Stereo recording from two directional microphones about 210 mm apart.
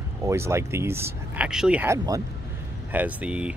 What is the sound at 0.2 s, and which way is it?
Speech, 15° right (ahead or behind).